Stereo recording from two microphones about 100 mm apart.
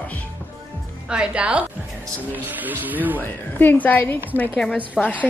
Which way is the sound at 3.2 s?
20° left (ahead or behind).